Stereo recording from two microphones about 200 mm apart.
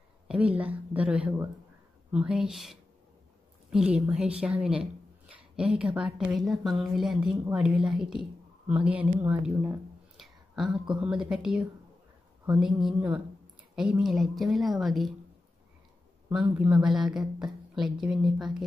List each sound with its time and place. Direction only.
0.3 s a woman's voice: 5° right (ahead or behind)
9.2 s a sound: 10° right (ahead or behind)
11.0 s a woman's voice: 5° right (ahead or behind)
16.3 s a woman's voice: 5° right (ahead or behind)